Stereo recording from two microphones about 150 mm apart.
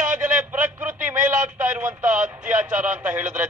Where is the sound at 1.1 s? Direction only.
60° right (ahead or behind).